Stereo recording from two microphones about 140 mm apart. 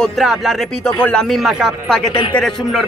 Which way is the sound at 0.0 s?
Centre (ahead or behind).